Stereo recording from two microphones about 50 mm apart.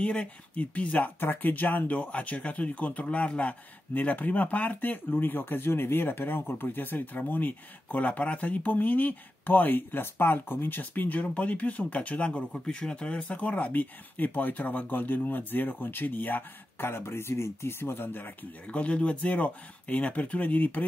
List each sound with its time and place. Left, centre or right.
0.0 s speech: left
1.2 s speech: left
12.5 s speech: centre; by 18.3 s left
18.7 s speech: left